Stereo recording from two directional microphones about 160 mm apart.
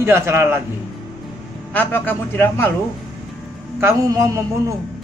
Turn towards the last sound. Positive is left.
turn(degrees=-20)  # may be behind; listen again after turning